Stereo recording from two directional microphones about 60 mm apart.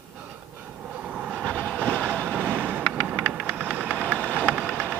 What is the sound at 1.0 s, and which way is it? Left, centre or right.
Train, centre.